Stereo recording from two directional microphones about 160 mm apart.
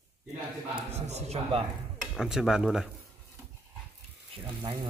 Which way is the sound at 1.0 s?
40° right (ahead or behind).